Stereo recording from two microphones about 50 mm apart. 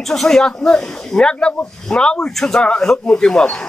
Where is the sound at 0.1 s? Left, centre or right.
Centre.